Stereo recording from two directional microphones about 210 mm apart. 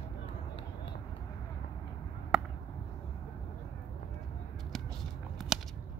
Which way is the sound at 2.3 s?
5° right (ahead or behind).